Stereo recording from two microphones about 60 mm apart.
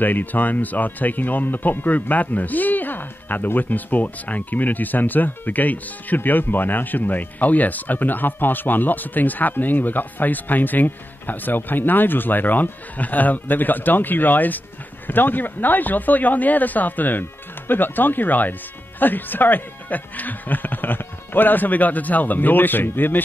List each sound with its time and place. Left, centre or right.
0.0 s speech: left